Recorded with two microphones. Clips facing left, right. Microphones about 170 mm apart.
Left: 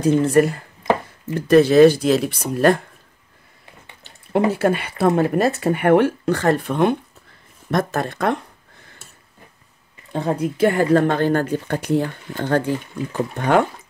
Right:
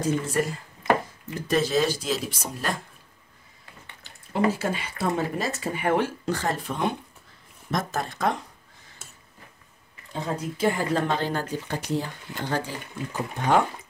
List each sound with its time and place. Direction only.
0.0 s speech: 65° left (ahead or behind)
4.3 s speech: 60° left (ahead or behind)
10.1 s speech: 60° left (ahead or behind)